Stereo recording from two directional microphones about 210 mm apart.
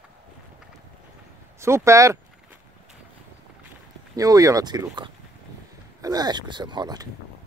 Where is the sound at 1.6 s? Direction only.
15° right (ahead or behind).